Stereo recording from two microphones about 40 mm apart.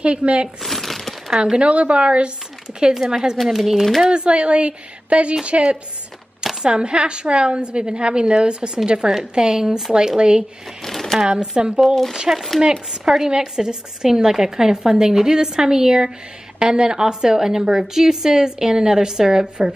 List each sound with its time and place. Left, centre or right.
0.0 s a woman's voice: right
0.6 s a sound: centre
1.4 s a woman's voice: right
2.9 s a woman's voice: centre
3.3 s speech: centre
4.0 s a woman's voice: right
6.6 s a woman's voice: right; by 9.9 s centre
9.9 s a woman's voice: centre
10.8 s a sound: centre
11.5 s a woman's voice: centre
11.9 s speech: centre
12.9 s a woman's voice: centre